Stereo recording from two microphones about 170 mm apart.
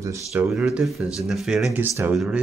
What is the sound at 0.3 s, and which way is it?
Speech, centre (ahead or behind).